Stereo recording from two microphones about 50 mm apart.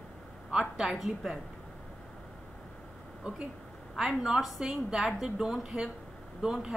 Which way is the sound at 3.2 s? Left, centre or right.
Right.